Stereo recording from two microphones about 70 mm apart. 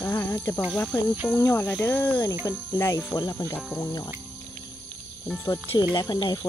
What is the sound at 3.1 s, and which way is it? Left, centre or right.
Speech, left.